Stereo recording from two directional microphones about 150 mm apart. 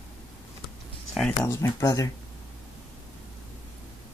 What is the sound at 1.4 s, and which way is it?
Speech, 20° left (ahead or behind).